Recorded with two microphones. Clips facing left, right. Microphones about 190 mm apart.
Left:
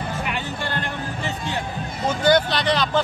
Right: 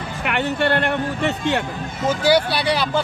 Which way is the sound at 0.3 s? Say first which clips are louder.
Right 8 dB; 65° right (ahead or behind).